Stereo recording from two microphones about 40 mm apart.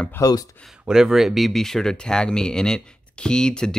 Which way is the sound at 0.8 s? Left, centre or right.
Centre.